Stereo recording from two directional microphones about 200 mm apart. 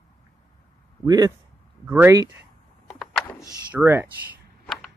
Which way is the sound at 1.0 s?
20° right (ahead or behind).